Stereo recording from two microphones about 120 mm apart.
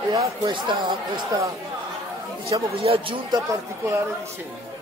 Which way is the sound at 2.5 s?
50° right (ahead or behind).